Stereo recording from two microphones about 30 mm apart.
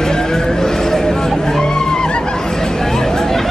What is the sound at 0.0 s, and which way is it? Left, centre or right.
Music, centre.